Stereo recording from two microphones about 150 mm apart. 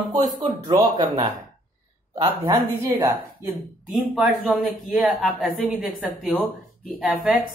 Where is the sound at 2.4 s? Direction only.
20° right (ahead or behind).